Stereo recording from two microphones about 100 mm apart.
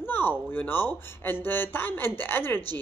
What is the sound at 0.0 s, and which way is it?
A woman's voice, 20° left (ahead or behind).